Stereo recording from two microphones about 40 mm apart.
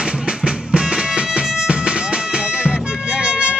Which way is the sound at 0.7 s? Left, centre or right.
Right.